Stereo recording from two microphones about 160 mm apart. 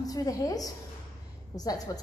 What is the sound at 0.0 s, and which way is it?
A woman's voice, 20° left (ahead or behind).